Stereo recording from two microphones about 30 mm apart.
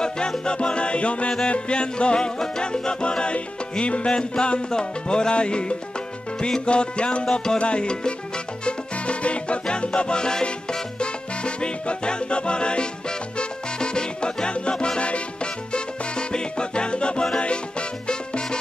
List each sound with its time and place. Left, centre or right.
0.5 s music: left
8.6 s salsa music: left